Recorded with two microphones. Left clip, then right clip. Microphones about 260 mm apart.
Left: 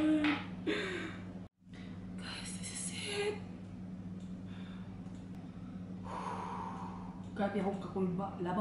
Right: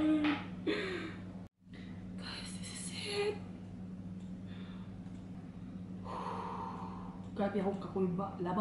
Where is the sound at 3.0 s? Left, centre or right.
Centre.